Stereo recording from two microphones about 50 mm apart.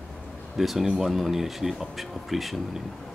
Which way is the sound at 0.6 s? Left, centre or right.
Centre.